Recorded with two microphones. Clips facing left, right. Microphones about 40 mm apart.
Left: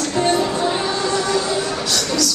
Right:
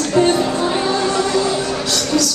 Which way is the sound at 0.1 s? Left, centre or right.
Centre.